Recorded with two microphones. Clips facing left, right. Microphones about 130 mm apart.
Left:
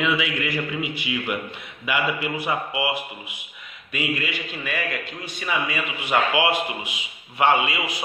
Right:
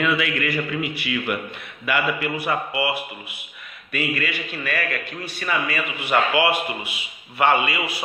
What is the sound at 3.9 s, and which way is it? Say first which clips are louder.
A man's voice: right 1 dB; 10° left (ahead or behind).